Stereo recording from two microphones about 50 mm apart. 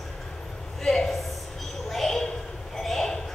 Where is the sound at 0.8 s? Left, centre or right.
Centre.